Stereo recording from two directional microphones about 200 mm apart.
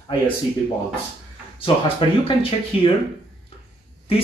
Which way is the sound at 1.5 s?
25° left (ahead or behind).